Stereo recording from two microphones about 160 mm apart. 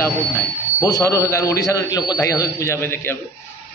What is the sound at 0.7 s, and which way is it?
A man's voice, 20° left (ahead or behind).